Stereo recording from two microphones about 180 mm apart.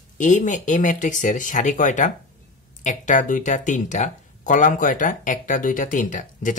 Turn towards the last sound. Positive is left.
turn(degrees=45)  # may be behind; listen again after turning